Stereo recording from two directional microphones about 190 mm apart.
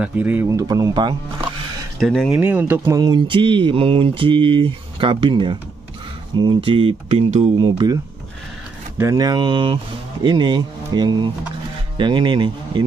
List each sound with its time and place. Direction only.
0.0 s speech: 10° right (ahead or behind)
2.0 s speech: centre (ahead or behind)
3.0 s speech: 25° right (ahead or behind)